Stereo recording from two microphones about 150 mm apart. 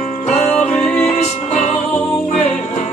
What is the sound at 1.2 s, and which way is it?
Music, 50° left (ahead or behind).